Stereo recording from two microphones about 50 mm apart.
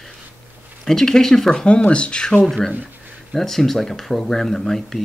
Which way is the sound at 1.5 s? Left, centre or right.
Centre.